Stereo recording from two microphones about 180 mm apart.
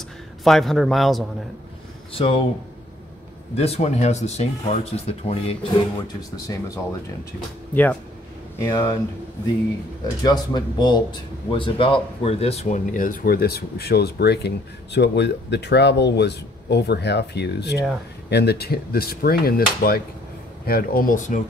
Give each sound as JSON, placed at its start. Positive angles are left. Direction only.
{"t": 0.4, "sound": "a man's voice", "side_deg": 0}
{"t": 2.1, "sound": "speech", "side_deg": 30}
{"t": 3.5, "sound": "speech", "side_deg": 35}
{"t": 6.3, "sound": "speech", "side_deg": 20}
{"t": 10.2, "sound": "speech", "side_deg": 25}